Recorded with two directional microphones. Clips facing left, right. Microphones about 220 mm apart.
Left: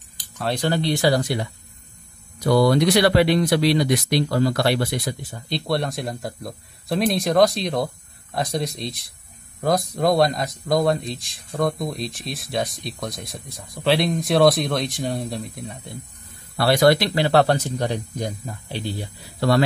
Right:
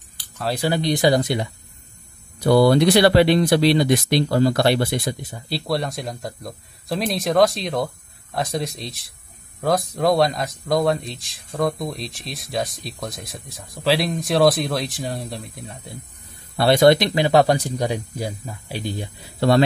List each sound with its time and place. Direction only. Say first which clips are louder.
0.4 s speech: even; 5° right (ahead or behind); by 5.4 s 25° right (ahead or behind)
5.5 s speech: even; centre (ahead or behind)
16.5 s speech: right 2 dB; 20° right (ahead or behind)
19.4 s speech: right 2 dB; 25° right (ahead or behind)